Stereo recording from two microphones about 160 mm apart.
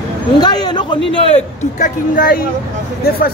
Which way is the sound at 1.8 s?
60° left (ahead or behind).